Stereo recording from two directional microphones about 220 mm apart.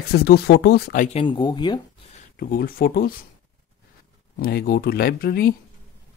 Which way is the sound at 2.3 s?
40° left (ahead or behind).